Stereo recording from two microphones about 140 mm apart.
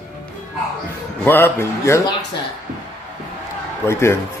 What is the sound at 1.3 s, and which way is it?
Speech, 15° left (ahead or behind).